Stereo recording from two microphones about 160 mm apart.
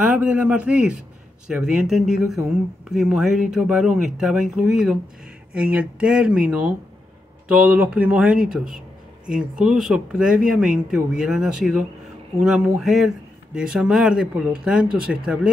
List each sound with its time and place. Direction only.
0.0 s speech: 5° right (ahead or behind)
8.6 s a sound: 60° right (ahead or behind)
9.4 s speech: 5° right (ahead or behind)